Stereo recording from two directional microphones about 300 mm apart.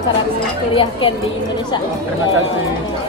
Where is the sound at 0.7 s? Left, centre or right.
Centre.